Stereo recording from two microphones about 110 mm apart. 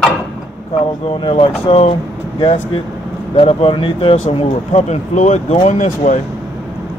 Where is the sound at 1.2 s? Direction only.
55° left (ahead or behind); by 1.9 s 70° left (ahead or behind).